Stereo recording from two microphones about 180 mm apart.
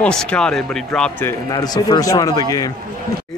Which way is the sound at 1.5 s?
20° left (ahead or behind).